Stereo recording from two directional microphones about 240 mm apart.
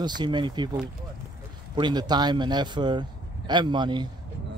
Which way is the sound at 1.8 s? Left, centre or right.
Centre.